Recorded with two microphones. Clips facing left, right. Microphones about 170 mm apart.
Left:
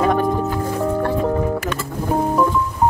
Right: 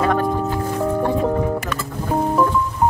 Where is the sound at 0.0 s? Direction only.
15° left (ahead or behind).